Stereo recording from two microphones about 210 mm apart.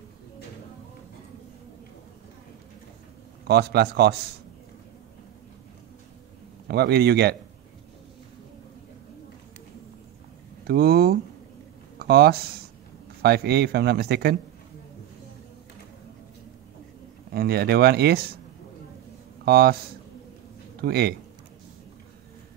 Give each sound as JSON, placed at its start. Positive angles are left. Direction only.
{"t": 3.4, "sound": "speech", "side_deg": -50}
{"t": 6.7, "sound": "speech", "side_deg": -50}
{"t": 10.6, "sound": "a sound", "side_deg": -45}
{"t": 12.0, "sound": "speech", "side_deg": -50}
{"t": 17.3, "sound": "speech", "side_deg": -50}
{"t": 19.4, "sound": "speech", "side_deg": -50}
{"t": 20.8, "sound": "speech", "side_deg": -50}